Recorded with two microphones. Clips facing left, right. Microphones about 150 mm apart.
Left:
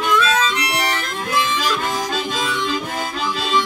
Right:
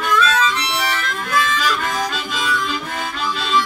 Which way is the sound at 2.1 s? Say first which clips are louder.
Left 3 dB; 35° left (ahead or behind).